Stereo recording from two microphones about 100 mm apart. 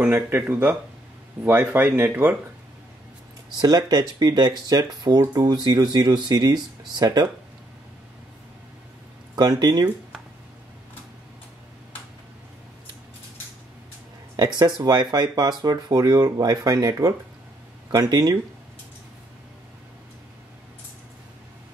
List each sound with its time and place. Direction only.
0.0 s speech: 20° right (ahead or behind)
3.5 s speech: 45° right (ahead or behind)
9.3 s speech: 45° right (ahead or behind)
14.3 s speech: 45° right (ahead or behind)
18.1 s speech: 40° right (ahead or behind)